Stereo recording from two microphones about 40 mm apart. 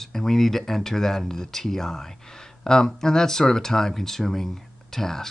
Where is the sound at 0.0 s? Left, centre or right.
Centre.